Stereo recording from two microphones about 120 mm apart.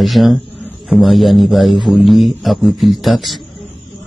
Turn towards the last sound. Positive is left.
turn(degrees=0)  # may be behind; listen again after turning